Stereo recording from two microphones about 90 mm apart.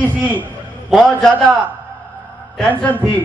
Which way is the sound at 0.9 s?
Centre (ahead or behind).